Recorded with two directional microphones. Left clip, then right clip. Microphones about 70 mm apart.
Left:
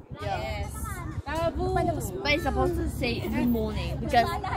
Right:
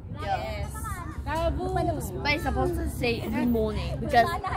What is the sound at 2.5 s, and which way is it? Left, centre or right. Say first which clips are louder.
Speech: left 1 dB; right.